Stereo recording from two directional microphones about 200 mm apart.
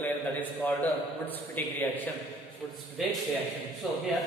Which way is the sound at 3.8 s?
Centre (ahead or behind).